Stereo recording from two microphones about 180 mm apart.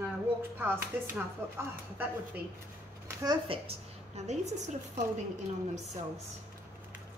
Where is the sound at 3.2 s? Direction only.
25° right (ahead or behind).